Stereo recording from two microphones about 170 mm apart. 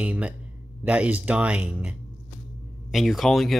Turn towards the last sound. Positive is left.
turn(degrees=0)  # may be behind; listen again after turning